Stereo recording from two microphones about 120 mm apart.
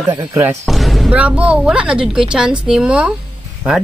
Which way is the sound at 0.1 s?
25° right (ahead or behind).